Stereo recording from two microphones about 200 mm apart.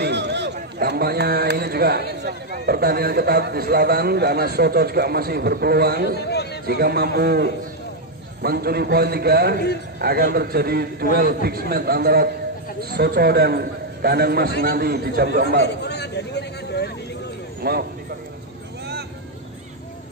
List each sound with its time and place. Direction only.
0.0 s speech: 60° right (ahead or behind)
6.3 s chatter: 55° left (ahead or behind)
6.6 s speech: 50° right (ahead or behind)
15.6 s a sound: 55° left (ahead or behind)
17.6 s speech: 50° right (ahead or behind)